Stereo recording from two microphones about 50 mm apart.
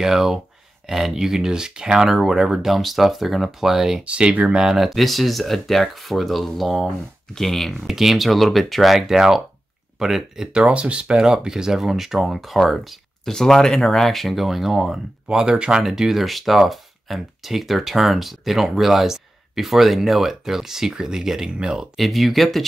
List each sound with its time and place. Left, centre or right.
0.0 s speech: centre
4.1 s speech: right
4.6 s speech: centre
10.7 s speech: right
21.9 s speech: centre